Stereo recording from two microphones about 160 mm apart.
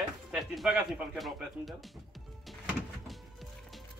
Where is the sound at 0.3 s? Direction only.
Centre (ahead or behind).